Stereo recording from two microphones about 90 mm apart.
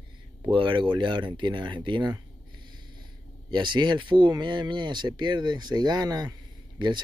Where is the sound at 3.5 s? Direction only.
60° right (ahead or behind).